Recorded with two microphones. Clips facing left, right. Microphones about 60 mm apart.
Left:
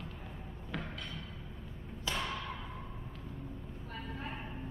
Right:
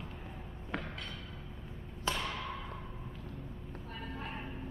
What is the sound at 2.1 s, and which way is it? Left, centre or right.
Thump, right.